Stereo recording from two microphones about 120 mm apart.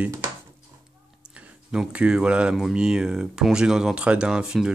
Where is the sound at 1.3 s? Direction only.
5° right (ahead or behind).